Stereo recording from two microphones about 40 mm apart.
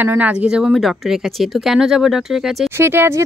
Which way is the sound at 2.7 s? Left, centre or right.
Right.